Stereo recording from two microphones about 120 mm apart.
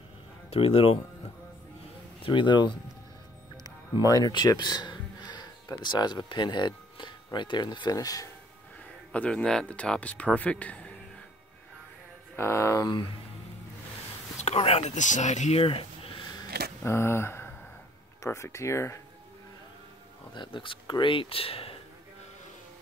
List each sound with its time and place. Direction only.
0.5 s speech: 55° left (ahead or behind)
2.2 s speech: 40° left (ahead or behind)
9.1 s speech: 10° left (ahead or behind)
12.4 s speech: 20° left (ahead or behind)
14.3 s speech: 65° left (ahead or behind)
15.6 s a sound: 50° left (ahead or behind)
16.8 s speech: 20° left (ahead or behind)
20.3 s speech: 45° left (ahead or behind)